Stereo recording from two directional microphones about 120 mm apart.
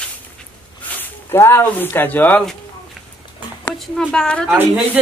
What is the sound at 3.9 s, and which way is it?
Speech, 5° left (ahead or behind).